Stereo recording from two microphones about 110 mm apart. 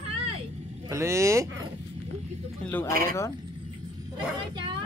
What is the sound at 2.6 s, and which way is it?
Speech, 20° left (ahead or behind).